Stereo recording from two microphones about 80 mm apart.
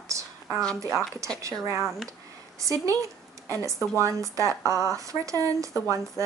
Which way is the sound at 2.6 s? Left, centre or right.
Right.